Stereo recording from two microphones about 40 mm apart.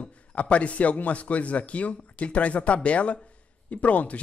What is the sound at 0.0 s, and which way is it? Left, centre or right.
Speech, left.